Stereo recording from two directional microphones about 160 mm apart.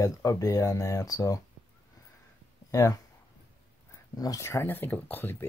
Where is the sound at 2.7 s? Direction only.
20° left (ahead or behind).